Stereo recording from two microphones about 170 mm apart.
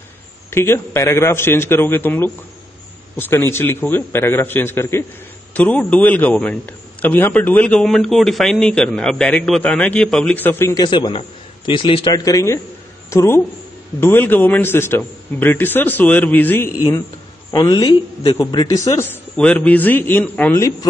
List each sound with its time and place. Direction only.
0.5 s a man's voice: 15° left (ahead or behind)
17.5 s a man's voice: 20° left (ahead or behind)